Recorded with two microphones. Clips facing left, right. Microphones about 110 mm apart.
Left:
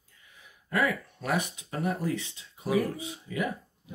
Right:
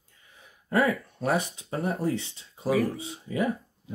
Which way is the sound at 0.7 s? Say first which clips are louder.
Right 4 dB; 30° right (ahead or behind).